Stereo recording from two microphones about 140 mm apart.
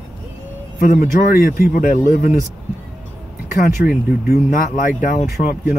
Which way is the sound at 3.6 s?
90° left.